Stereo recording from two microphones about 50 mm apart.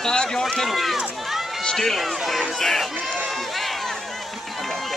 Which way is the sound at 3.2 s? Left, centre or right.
Centre.